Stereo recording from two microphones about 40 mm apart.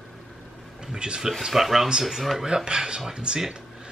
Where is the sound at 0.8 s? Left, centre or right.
Centre.